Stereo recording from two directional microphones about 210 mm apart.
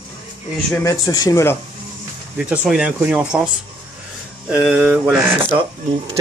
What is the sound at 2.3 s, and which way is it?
Speech, 5° right (ahead or behind).